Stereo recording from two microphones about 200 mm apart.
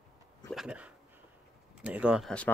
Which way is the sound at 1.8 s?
5° right (ahead or behind).